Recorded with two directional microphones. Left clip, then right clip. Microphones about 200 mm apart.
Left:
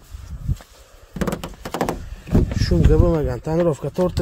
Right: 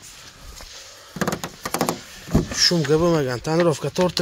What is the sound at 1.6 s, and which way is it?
Door, 20° left (ahead or behind).